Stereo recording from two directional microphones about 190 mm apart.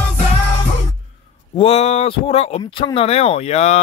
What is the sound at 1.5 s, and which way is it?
Speech, 30° left (ahead or behind).